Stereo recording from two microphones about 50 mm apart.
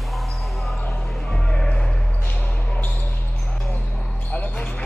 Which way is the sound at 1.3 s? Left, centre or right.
Centre.